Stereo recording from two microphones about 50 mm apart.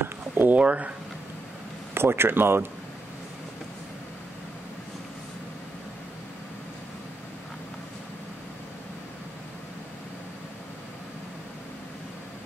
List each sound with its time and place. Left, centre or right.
0.0 s a sound: right
0.6 s speech: right
2.0 s speech: right